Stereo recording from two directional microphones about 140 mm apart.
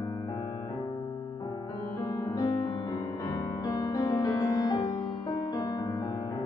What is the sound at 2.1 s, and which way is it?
Music, 30° left (ahead or behind).